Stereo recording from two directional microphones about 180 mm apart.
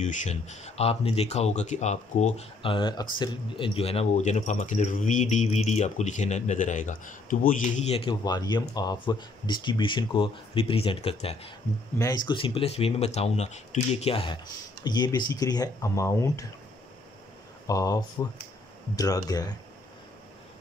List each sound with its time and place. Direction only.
0.0 s speech: 40° left (ahead or behind); by 16.4 s 15° left (ahead or behind)
17.6 s speech: 20° left (ahead or behind)